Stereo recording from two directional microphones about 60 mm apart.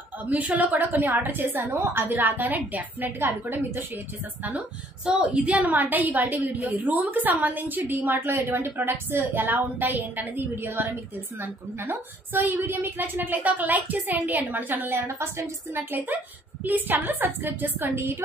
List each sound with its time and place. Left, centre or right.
0.3 s a woman's voice: right
5.0 s a woman's voice: right
14.9 s a woman's voice: right